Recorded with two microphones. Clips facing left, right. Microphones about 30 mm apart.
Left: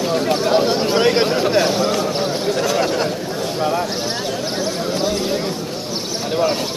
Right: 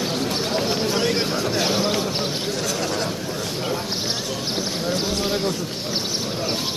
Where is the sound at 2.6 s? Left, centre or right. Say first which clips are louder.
Left 8 dB; left.